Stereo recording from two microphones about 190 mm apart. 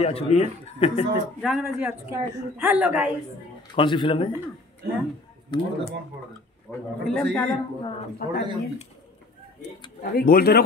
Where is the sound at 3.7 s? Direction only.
25° left (ahead or behind).